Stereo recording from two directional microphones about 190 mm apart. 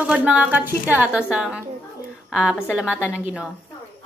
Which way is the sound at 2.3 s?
Centre (ahead or behind).